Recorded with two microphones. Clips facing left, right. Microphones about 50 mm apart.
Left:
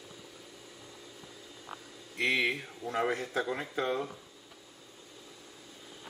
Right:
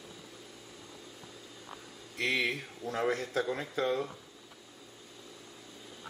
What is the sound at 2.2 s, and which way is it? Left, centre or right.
Speech, centre.